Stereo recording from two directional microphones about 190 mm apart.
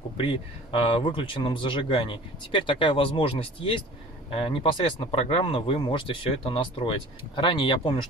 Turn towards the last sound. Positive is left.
turn(degrees=25)  # may be behind; listen again after turning